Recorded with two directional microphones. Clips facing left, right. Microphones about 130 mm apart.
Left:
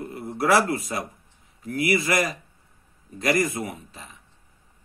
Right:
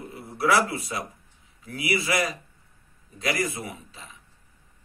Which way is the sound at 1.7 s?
50° left (ahead or behind).